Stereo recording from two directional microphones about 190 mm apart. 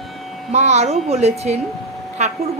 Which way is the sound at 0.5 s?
35° right (ahead or behind).